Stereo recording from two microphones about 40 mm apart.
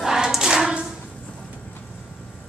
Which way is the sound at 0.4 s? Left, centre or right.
Centre.